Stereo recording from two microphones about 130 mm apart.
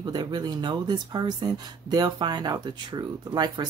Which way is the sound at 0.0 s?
35° right (ahead or behind).